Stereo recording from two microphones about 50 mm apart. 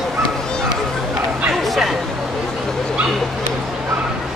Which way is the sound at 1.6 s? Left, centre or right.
Centre.